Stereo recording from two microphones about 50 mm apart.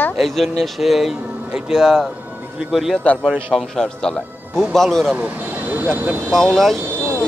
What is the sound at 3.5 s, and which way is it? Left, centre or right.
Speech, centre.